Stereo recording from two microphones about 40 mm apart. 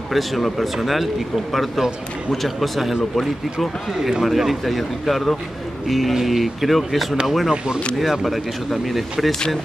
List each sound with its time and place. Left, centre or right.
0.1 s speech: centre
4.2 s speech: centre
7.5 s speech: right
8.0 s speech: centre